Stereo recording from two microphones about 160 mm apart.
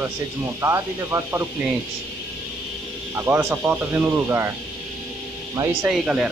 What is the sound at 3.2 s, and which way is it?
Speech, 15° right (ahead or behind).